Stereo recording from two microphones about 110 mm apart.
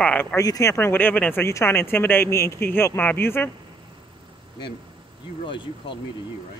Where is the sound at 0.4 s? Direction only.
30° left (ahead or behind).